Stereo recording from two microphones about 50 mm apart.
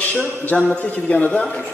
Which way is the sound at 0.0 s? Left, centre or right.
Left.